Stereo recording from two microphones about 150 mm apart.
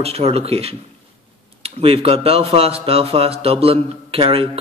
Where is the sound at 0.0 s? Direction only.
40° right (ahead or behind).